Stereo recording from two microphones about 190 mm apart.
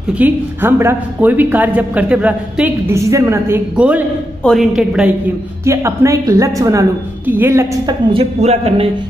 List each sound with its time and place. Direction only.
0.2 s a woman's voice: 10° right (ahead or behind)
5.7 s a woman's voice: 15° right (ahead or behind)
8.1 s speech: 30° right (ahead or behind)